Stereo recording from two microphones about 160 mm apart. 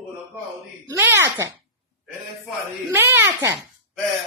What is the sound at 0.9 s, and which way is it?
Speech, 15° right (ahead or behind).